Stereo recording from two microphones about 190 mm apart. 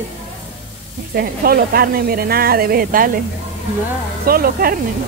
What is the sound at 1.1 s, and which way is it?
Speech, 50° right (ahead or behind).